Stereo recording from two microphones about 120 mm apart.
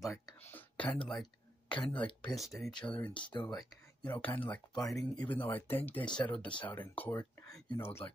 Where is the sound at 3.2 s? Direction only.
40° left (ahead or behind).